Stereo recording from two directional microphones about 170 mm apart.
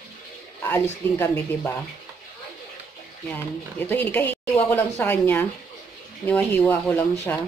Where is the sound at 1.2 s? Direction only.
10° left (ahead or behind).